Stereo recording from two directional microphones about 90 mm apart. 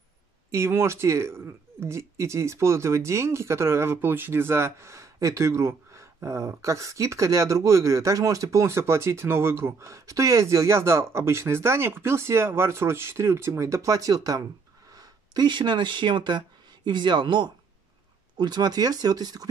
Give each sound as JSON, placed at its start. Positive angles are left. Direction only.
{"t": 0.5, "sound": "speech", "side_deg": -30}